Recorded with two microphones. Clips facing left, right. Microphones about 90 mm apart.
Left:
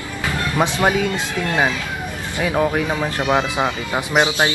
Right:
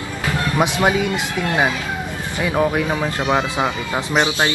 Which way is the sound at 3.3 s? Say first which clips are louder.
Left 1 dB; 15° left (ahead or behind).